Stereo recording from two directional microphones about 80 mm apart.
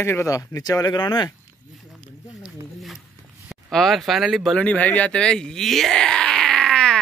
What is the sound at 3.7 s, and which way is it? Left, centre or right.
Speech, centre.